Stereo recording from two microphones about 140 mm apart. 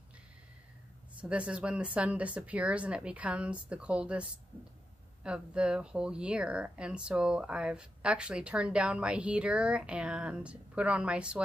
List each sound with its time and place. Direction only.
1.2 s speech: 5° right (ahead or behind)
5.2 s speech: 5° right (ahead or behind)